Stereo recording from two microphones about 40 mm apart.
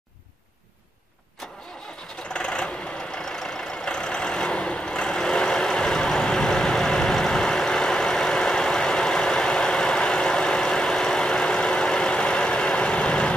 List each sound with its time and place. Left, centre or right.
1.4 s vehicle: centre
2.3 s vehicle: left